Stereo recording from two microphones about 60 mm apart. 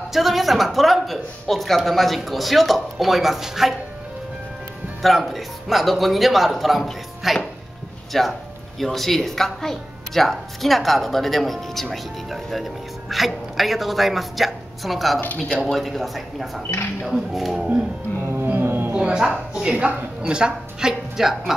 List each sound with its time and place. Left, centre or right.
0.1 s a woman's voice: centre
5.0 s a woman's voice: centre
18.6 s music: right
18.9 s music: centre
19.5 s a woman's voice: centre